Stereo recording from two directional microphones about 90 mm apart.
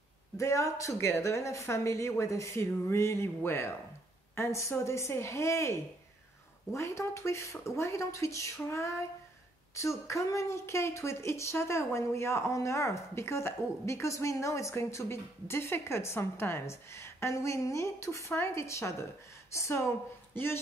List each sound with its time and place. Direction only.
0.4 s a woman's voice: 35° left (ahead or behind)